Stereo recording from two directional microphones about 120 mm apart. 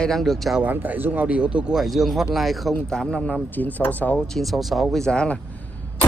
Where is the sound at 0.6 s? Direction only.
15° right (ahead or behind); by 5.4 s 5° left (ahead or behind).